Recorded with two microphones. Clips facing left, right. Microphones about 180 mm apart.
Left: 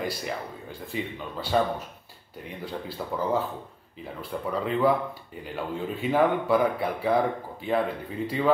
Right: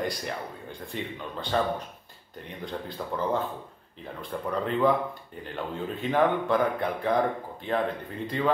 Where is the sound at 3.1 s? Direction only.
5° left (ahead or behind).